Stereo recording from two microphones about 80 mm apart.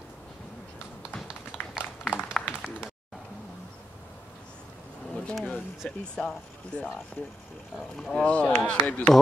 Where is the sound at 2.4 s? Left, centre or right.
Centre.